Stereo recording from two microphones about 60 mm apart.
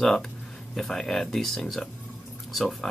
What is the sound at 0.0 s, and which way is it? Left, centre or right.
Speech, centre.